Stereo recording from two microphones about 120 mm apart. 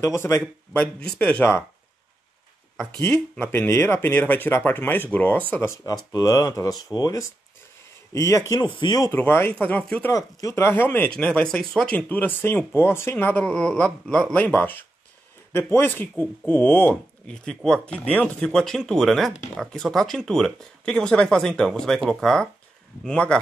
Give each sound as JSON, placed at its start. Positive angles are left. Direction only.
{"t": 0.0, "sound": "speech", "side_deg": 20}
{"t": 0.9, "sound": "speech", "side_deg": 5}
{"t": 3.0, "sound": "speech", "side_deg": 20}
{"t": 9.1, "sound": "speech", "side_deg": 20}